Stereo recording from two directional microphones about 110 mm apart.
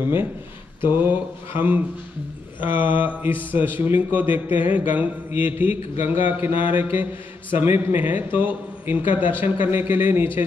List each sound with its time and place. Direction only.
0.0 s a man's voice: 20° right (ahead or behind)